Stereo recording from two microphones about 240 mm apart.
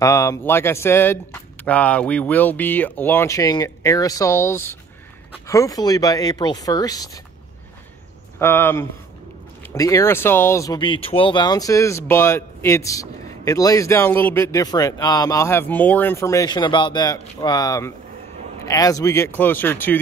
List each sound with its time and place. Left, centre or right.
0.0 s speech: centre
8.4 s speech: centre